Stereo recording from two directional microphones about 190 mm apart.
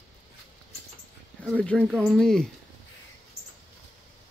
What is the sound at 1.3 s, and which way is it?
Speech, 5° left (ahead or behind).